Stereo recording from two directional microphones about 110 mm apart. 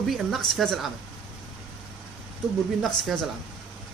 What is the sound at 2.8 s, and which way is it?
Speech, centre (ahead or behind).